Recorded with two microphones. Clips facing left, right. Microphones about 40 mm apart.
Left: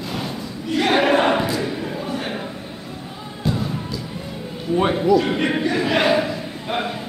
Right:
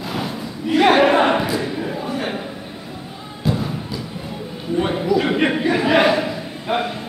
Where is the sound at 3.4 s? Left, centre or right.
Centre.